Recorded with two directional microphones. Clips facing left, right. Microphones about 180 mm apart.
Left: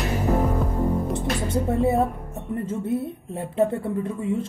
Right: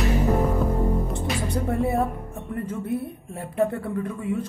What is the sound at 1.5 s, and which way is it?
A woman's voice, 25° left (ahead or behind).